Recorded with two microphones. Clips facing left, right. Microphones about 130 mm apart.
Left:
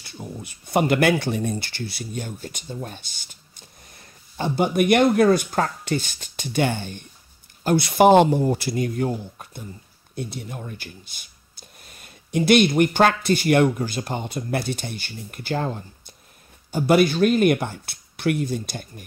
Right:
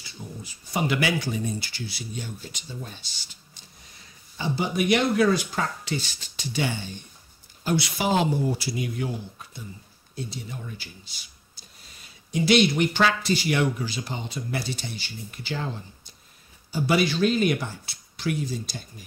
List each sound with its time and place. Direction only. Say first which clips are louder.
0.0 s speech: left 4 dB; 60° left (ahead or behind)